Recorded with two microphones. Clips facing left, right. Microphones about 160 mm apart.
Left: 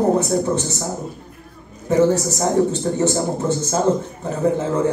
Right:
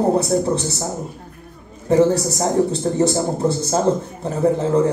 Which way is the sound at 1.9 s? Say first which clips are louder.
Right 1 dB; 35° right (ahead or behind).